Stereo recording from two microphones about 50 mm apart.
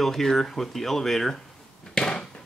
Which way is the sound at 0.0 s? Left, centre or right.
Centre.